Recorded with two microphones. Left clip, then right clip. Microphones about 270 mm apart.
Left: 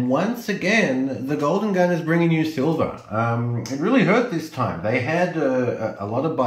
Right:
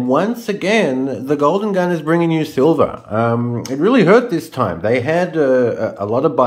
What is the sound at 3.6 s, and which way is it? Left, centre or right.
Speech, right.